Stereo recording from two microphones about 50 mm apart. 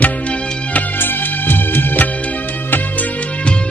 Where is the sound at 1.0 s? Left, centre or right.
Left.